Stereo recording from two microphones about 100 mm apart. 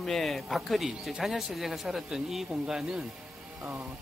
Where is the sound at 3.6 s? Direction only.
25° right (ahead or behind).